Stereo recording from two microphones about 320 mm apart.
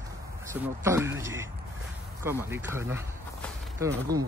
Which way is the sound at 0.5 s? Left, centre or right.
Centre.